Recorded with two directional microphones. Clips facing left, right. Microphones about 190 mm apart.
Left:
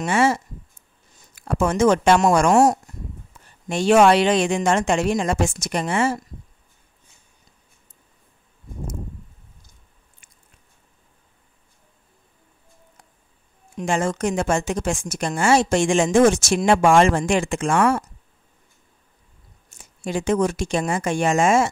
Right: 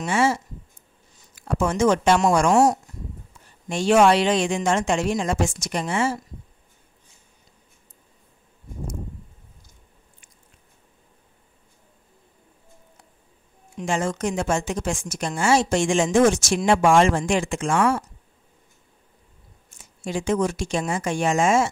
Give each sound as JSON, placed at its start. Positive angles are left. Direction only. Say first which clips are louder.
{"t": 0.0, "sound": "a woman's voice", "louder": "left 2 dB", "side_deg": 60}
{"t": 13.7, "sound": "a woman's voice", "louder": "left 2 dB", "side_deg": 55}
{"t": 19.8, "sound": "a woman's voice", "louder": "left 2 dB", "side_deg": 55}